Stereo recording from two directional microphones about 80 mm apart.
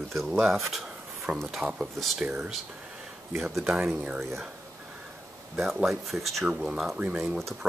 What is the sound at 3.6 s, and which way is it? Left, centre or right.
Speech, centre.